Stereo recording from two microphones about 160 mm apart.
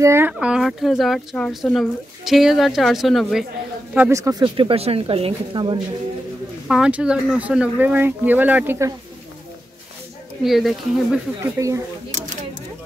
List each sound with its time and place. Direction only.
0.0 s speech: 15° right (ahead or behind)
4.2 s speech: 20° right (ahead or behind)
4.6 s speech: 35° right (ahead or behind)
6.7 s speech: 5° right (ahead or behind)
10.4 s speech: centre (ahead or behind)
11.4 s speech: 15° right (ahead or behind)